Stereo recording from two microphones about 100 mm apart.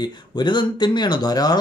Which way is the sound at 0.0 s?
50° left (ahead or behind).